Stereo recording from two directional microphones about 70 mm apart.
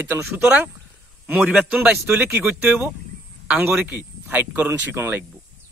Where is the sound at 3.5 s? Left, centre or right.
Right.